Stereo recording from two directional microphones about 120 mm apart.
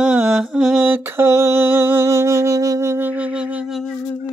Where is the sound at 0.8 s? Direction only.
20° right (ahead or behind).